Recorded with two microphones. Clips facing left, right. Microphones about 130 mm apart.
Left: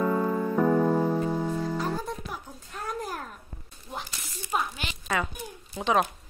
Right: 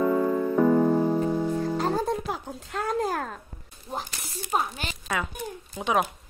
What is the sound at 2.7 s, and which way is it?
Speech, 90° right.